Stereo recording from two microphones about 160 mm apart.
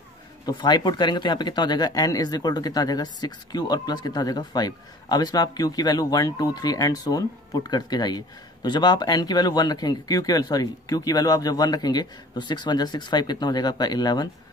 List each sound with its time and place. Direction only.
0.5 s speech: 25° left (ahead or behind)